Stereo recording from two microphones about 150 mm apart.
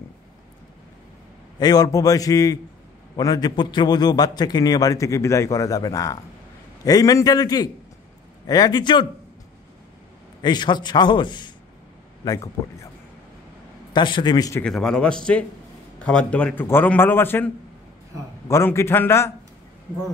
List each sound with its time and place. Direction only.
1.6 s a man's voice: 25° left (ahead or behind)
10.4 s a man's voice: 30° left (ahead or behind)
13.9 s a man's voice: 30° left (ahead or behind)
14.6 s a man's voice: 5° left (ahead or behind)
18.5 s a man's voice: 15° left (ahead or behind)